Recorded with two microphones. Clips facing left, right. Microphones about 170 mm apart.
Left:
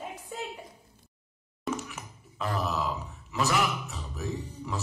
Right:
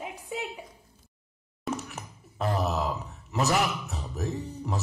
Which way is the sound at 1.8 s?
40° right (ahead or behind).